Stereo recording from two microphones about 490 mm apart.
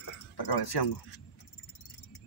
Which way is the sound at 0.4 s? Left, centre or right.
Left.